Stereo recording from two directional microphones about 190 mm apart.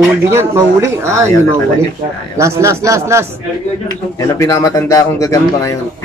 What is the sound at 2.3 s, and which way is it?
Speech, 15° right (ahead or behind).